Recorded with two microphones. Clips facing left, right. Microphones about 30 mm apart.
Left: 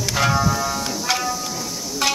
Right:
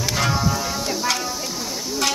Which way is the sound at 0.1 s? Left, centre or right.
Centre.